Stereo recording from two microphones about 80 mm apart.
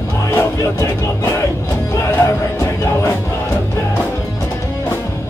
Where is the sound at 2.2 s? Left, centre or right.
Left.